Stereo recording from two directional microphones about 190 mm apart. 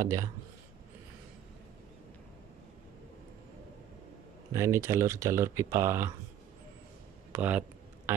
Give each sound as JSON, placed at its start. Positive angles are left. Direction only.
{"t": 0.0, "sound": "speech", "side_deg": -15}
{"t": 4.6, "sound": "speech", "side_deg": -15}
{"t": 7.3, "sound": "speech", "side_deg": -10}